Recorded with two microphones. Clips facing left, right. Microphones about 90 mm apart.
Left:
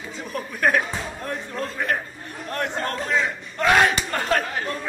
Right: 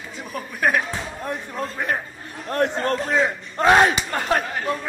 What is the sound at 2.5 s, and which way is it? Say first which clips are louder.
Speech: right 5 dB; 30° right (ahead or behind).